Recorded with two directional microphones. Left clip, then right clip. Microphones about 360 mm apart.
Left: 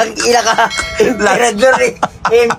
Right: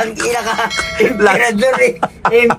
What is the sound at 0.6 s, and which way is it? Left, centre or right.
Speech, centre.